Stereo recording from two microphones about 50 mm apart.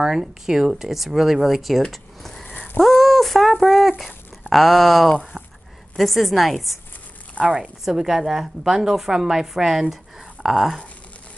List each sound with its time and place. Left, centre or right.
0.0 s speech: centre
1.9 s a sound: centre
2.4 s a sound: left
2.8 s speech: centre
7.4 s speech: right
7.8 s a woman's voice: centre